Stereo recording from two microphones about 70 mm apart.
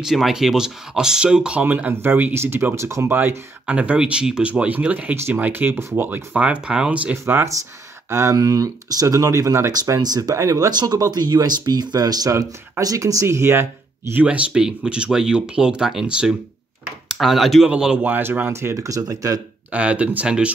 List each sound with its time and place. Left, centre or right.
0.0 s speech: centre; by 3.1 s right
3.1 s speech: right
3.6 s speech: centre
8.1 s speech: right
8.4 s speech: right
10.3 s speech: right
10.7 s speech: right
12.8 s speech: right
14.2 s speech: centre
18.0 s speech: right
18.5 s speech: right
19.7 s speech: centre